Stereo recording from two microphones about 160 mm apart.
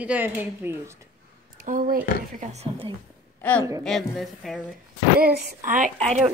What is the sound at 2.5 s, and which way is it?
Speech, 40° right (ahead or behind).